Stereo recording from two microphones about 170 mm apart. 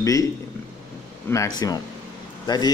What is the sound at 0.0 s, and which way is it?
Speech, 20° left (ahead or behind).